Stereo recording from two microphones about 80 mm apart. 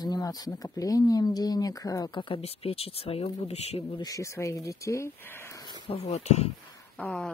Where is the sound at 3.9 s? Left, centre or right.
Left.